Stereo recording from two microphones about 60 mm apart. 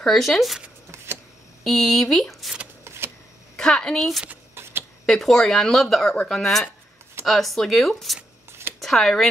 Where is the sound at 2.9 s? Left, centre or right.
Right.